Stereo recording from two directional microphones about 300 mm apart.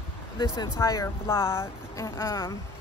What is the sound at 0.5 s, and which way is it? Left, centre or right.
Speech, centre.